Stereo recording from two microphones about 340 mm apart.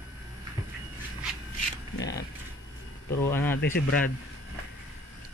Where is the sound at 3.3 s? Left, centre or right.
Centre.